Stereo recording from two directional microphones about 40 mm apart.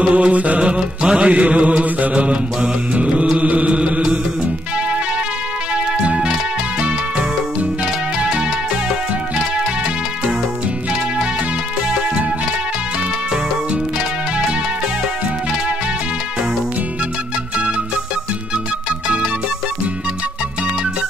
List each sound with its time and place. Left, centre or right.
0.0 s music: right
6.0 s music: right
8.2 s music: centre